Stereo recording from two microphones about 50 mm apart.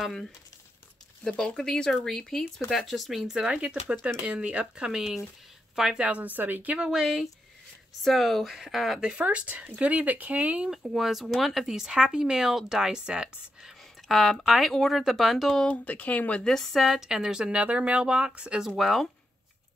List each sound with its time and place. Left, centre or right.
1.2 s speech: centre
4.3 s speech: right
5.9 s a woman's voice: right
6.8 s speech: centre
8.0 s speech: centre
9.1 s speech: right
10.9 s speech: centre
14.0 s speech: centre
15.4 s speech: centre
15.7 s speech: left
16.4 s speech: centre; by 18.6 s right
18.8 s speech: centre